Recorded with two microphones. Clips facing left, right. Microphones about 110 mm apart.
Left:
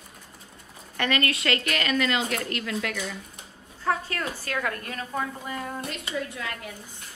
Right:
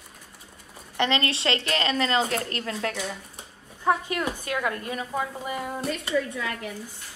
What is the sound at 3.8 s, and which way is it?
A woman's voice, 15° right (ahead or behind).